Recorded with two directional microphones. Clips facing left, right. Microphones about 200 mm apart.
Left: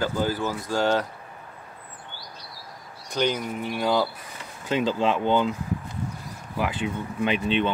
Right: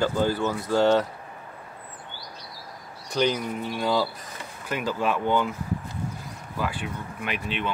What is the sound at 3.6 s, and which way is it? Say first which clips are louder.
Speech: left 2 dB; 10° left (ahead or behind).